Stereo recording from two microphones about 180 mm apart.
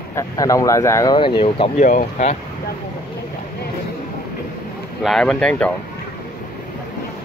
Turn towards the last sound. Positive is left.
turn(degrees=5)  # may be behind; listen again after turning